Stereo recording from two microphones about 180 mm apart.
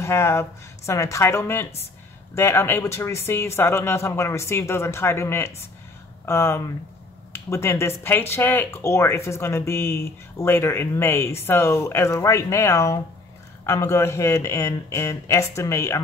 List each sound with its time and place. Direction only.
0.0 s speech: 15° left (ahead or behind)